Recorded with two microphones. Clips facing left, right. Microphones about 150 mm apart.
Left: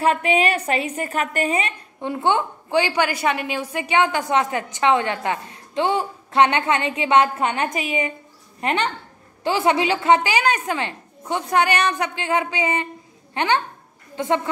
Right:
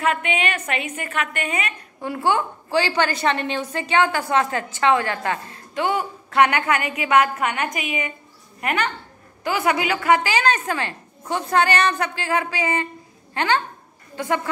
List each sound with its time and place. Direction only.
0.0 s a woman's voice: 35° left (ahead or behind)